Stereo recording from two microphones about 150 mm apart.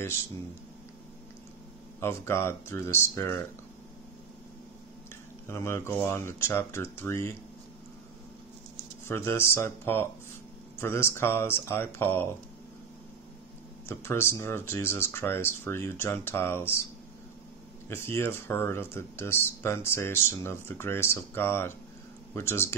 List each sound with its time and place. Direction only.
2.0 s speech: 15° left (ahead or behind)
5.5 s speech: 15° left (ahead or behind)
9.0 s speech: 15° left (ahead or behind)
13.8 s speech: 15° left (ahead or behind)
17.8 s speech: 15° left (ahead or behind)